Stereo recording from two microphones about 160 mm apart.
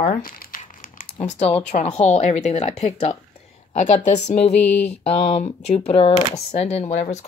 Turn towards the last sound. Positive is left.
turn(degrees=45)  # may be behind; listen again after turning